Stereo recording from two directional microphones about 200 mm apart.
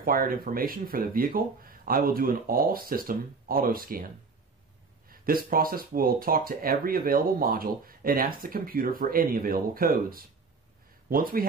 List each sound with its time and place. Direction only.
0.0 s speech: 45° right (ahead or behind)
5.1 s speech: 45° right (ahead or behind)